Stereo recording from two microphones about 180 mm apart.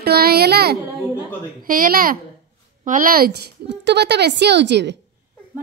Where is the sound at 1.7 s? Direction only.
50° right (ahead or behind); by 4.9 s 70° right (ahead or behind).